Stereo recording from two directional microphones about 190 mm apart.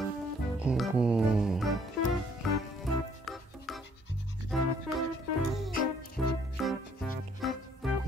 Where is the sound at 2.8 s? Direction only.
Centre (ahead or behind).